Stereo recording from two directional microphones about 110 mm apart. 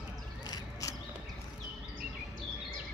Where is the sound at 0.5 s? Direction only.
30° left (ahead or behind).